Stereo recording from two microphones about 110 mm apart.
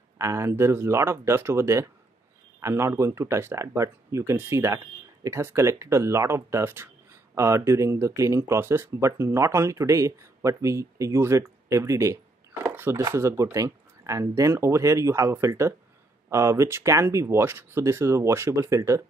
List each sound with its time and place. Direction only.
0.2 s speech: 25° right (ahead or behind)
12.6 s chopping: 20° right (ahead or behind)
13.0 s speech: 25° right (ahead or behind)